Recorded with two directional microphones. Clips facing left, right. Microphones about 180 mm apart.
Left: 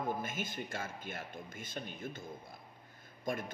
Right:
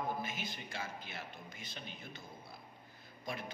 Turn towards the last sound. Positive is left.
turn(degrees=50)  # may be behind; listen again after turning